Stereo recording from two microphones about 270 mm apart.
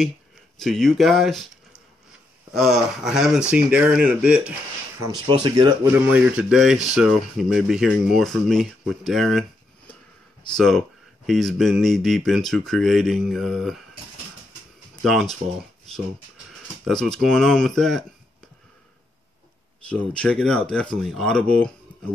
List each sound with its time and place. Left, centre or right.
0.6 s speech: centre
2.5 s speech: centre
5.1 s speech: centre
6.1 s speech: centre
15.0 s speech: centre
16.8 s speech: centre
19.9 s speech: centre